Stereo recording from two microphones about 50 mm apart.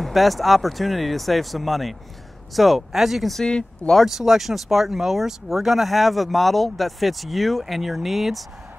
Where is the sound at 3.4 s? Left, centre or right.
Centre.